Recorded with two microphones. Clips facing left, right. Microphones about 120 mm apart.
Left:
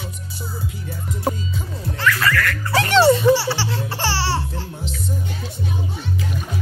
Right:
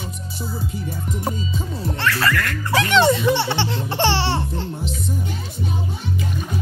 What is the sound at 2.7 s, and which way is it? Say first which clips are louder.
Speech: left 2 dB; 40° left (ahead or behind).